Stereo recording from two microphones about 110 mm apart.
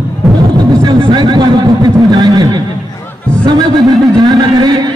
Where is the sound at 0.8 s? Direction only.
45° right (ahead or behind).